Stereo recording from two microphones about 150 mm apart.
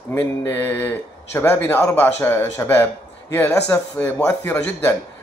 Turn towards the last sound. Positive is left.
turn(degrees=10)  # may be behind; listen again after turning